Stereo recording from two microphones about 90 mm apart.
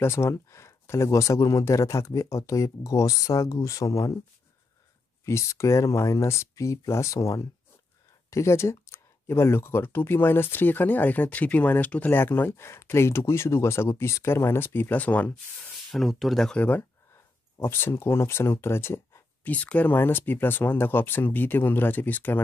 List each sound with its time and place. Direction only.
0.0 s speech: 30° left (ahead or behind)
5.2 s speech: 35° left (ahead or behind)
15.9 s speech: centre (ahead or behind)
16.6 s speech: 25° left (ahead or behind)
19.5 s speech: 15° left (ahead or behind)